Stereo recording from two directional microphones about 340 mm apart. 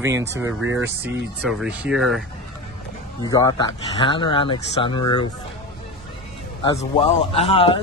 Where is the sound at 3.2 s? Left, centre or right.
Centre.